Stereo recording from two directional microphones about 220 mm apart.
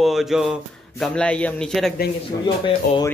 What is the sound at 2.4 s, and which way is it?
Speech, 20° left (ahead or behind).